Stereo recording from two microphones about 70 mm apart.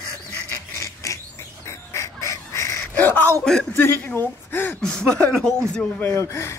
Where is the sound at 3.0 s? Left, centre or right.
Left.